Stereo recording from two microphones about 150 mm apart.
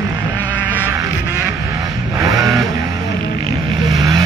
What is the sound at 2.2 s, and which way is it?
Vehicle, 20° right (ahead or behind).